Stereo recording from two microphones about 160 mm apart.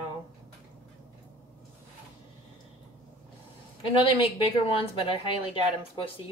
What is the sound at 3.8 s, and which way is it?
Speech, 35° left (ahead or behind).